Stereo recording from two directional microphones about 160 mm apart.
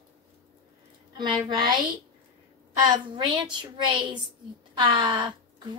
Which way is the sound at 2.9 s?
30° right (ahead or behind).